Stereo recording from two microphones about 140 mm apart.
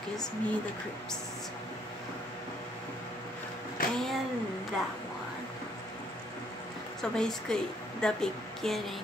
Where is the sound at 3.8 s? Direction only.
90° left.